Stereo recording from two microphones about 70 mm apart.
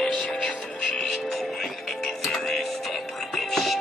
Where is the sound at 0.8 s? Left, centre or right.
Centre.